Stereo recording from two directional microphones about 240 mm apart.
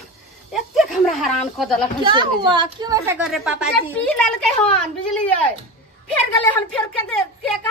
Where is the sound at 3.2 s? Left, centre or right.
Centre.